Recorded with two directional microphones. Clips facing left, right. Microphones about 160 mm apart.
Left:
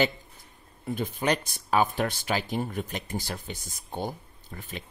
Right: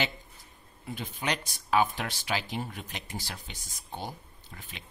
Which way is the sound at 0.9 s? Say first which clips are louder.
Left 6 dB; 50° left (ahead or behind).